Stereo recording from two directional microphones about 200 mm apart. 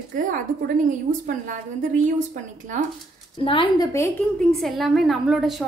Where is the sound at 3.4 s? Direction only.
25° left (ahead or behind).